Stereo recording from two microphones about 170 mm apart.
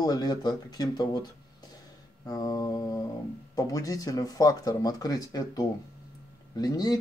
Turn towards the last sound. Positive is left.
turn(degrees=25)  # may be behind; listen again after turning